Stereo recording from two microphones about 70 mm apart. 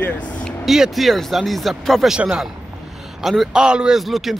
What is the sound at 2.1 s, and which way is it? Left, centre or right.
Speech, centre.